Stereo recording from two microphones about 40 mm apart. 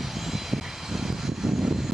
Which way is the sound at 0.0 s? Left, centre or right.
Centre.